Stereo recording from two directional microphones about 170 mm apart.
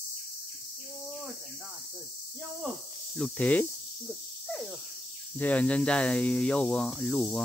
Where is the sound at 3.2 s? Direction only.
5° left (ahead or behind).